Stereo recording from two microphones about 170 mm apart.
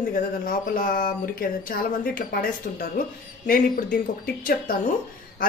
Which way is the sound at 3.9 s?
60° left (ahead or behind).